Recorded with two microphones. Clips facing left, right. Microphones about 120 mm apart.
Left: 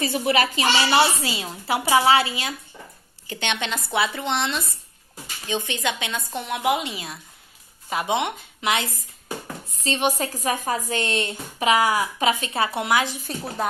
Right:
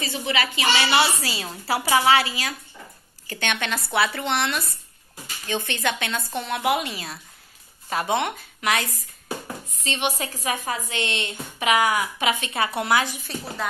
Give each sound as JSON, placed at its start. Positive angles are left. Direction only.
{"t": 0.0, "sound": "speech", "side_deg": 50}
{"t": 9.8, "sound": "speech", "side_deg": 35}